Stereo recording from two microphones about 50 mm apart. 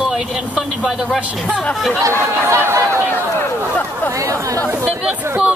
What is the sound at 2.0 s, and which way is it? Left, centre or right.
Speech, right.